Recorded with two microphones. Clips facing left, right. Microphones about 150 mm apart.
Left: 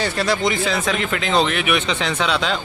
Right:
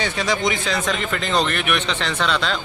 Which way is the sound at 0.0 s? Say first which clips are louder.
Left 2 dB; 5° left (ahead or behind).